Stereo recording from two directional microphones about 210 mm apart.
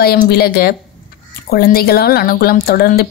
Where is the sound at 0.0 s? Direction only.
50° left (ahead or behind).